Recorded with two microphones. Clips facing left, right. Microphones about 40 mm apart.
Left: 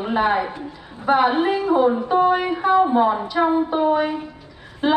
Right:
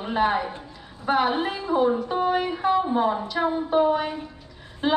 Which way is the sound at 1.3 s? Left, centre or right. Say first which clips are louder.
Left 6 dB; left.